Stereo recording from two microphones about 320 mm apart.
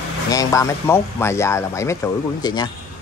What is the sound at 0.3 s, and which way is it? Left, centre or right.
Speech, centre.